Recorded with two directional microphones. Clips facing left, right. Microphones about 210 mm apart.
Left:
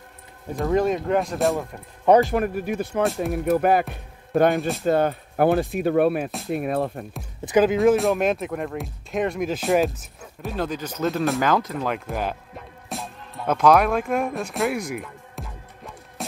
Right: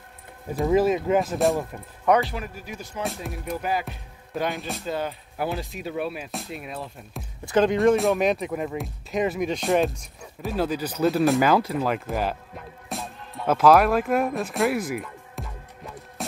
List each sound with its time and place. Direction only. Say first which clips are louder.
0.6 s speech: right 1 dB; 5° right (ahead or behind)
2.2 s speech: left 11 dB; 55° left (ahead or behind)
4.6 s speech: left 8 dB; centre (ahead or behind)
4.8 s speech: left 9 dB; 55° left (ahead or behind)
7.4 s speech: left 2 dB; 5° left (ahead or behind)
12.9 s music: left 1 dB; centre (ahead or behind)